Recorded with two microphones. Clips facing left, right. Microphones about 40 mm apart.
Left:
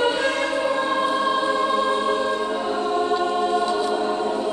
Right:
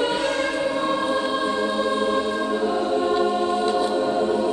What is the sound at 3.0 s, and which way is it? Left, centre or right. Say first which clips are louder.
Music: even; centre.